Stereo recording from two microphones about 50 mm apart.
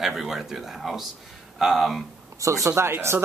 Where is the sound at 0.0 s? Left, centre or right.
Centre.